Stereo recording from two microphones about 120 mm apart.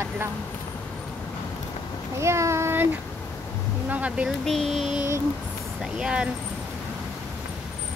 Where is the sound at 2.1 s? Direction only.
25° right (ahead or behind).